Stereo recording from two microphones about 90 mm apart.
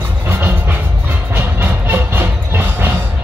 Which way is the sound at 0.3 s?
20° right (ahead or behind).